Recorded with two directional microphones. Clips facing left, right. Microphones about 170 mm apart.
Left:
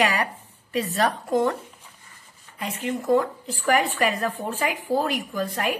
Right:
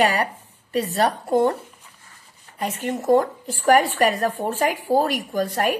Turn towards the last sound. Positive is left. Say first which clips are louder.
# right 4 dB
turn(degrees=-40)  # may be behind; listen again after turning